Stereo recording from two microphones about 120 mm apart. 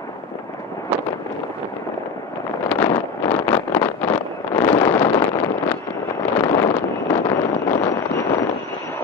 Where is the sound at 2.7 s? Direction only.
15° left (ahead or behind).